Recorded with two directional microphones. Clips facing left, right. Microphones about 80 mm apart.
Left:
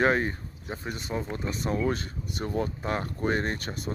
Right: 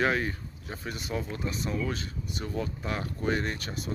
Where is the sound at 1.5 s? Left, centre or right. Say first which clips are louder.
Left 6 dB; left.